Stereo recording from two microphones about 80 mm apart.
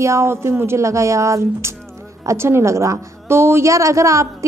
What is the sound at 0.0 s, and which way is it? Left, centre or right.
A woman's voice, right.